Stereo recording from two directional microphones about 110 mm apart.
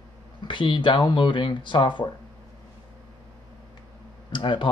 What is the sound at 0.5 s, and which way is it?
Speech, 45° left (ahead or behind).